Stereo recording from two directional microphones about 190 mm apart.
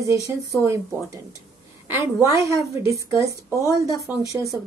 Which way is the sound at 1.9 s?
15° right (ahead or behind).